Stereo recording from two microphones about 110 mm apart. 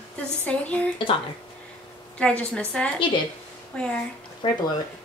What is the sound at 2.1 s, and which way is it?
A woman's voice, 10° left (ahead or behind).